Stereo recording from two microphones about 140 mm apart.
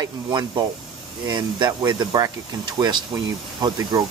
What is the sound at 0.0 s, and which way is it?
Speech, 30° right (ahead or behind).